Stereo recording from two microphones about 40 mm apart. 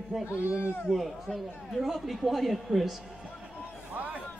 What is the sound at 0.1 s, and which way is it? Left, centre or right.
A man's voice, centre.